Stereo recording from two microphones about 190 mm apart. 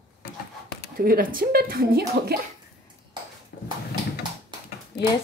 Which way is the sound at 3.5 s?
55° left (ahead or behind).